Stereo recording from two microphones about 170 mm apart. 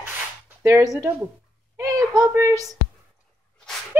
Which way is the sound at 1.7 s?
20° right (ahead or behind).